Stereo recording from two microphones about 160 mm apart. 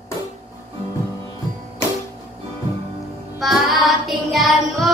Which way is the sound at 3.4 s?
Centre (ahead or behind).